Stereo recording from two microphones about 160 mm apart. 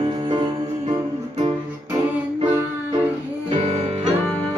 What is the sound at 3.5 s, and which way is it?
Music, 45° right (ahead or behind).